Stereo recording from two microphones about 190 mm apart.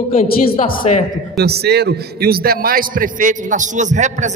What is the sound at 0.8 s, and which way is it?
Speech, 35° left (ahead or behind).